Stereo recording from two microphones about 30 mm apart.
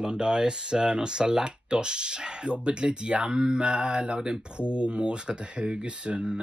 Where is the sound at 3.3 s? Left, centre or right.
Right.